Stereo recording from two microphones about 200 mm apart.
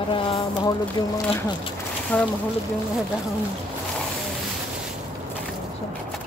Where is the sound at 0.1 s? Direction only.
25° left (ahead or behind).